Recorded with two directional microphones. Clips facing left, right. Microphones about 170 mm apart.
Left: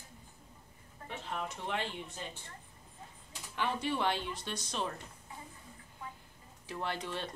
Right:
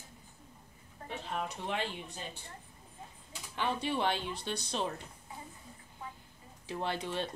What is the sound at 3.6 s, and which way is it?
Speech, 20° right (ahead or behind).